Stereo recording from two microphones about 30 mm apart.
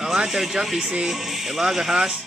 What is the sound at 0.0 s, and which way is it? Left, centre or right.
Music, centre.